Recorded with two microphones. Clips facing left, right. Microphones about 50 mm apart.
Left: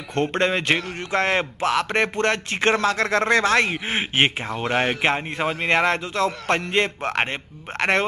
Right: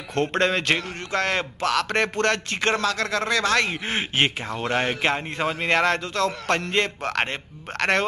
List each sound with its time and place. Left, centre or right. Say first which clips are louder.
0.1 s a man's voice: left 1 dB; centre
1.1 s speech: left 3 dB; left
2.8 s a man's voice: left 4 dB; left
3.6 s a man's voice: left 2 dB; centre